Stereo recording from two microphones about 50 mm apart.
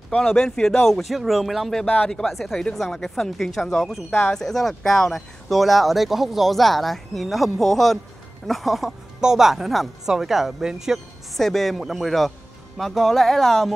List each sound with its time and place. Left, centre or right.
0.1 s speech: centre
1.0 s speech: centre
2.0 s speech: centre
11.3 s speech: centre